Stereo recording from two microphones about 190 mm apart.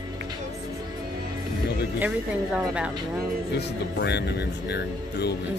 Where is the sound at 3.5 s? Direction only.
60° left (ahead or behind).